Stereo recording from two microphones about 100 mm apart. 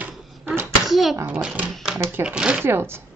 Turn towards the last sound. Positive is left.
turn(degrees=-25)  # may be behind; listen again after turning